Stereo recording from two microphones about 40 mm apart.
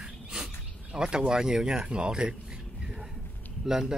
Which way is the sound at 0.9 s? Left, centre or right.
Right.